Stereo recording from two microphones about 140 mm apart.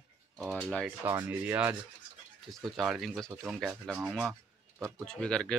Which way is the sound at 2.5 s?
Centre (ahead or behind).